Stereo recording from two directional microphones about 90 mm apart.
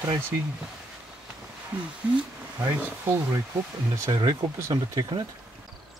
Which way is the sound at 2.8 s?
20° right (ahead or behind).